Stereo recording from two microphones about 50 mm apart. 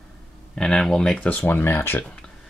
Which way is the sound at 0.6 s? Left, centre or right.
Centre.